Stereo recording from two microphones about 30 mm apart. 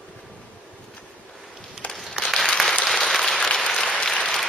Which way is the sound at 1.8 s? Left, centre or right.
Left.